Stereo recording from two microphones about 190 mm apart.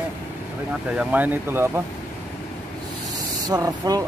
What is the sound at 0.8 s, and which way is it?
Speech, 10° right (ahead or behind).